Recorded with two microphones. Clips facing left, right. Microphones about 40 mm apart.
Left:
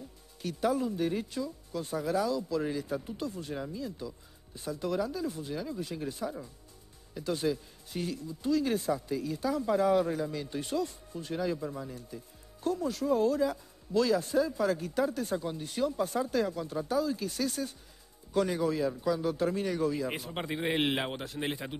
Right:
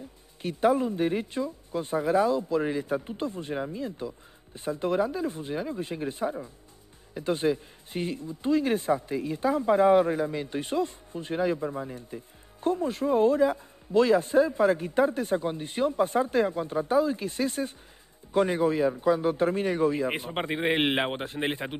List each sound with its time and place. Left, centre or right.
0.4 s speech: right